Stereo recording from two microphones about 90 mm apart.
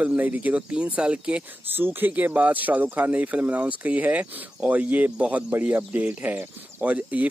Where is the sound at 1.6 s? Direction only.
25° right (ahead or behind).